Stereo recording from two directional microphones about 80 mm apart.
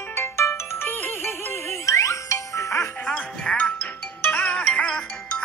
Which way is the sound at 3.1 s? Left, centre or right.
Centre.